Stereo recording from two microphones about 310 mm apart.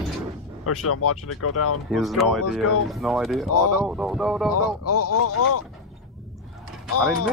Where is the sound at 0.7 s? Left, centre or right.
Left.